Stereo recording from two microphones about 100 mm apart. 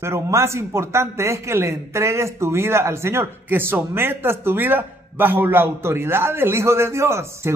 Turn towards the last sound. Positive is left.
turn(degrees=-25)  # may be behind; listen again after turning